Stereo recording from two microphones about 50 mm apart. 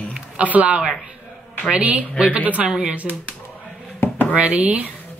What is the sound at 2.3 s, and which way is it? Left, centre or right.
Speech, right.